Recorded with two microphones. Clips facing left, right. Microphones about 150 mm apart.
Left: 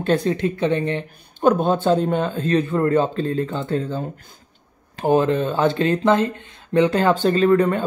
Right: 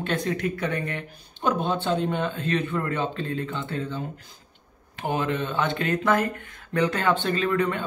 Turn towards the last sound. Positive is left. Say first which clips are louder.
# left 8 dB
turn(degrees=40)  # may be behind; listen again after turning